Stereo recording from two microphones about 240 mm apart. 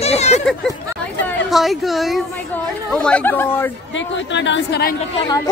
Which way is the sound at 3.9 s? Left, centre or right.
Left.